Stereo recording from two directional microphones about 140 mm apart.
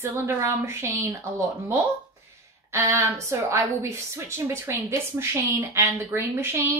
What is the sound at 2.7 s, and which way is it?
A woman's voice, 20° right (ahead or behind).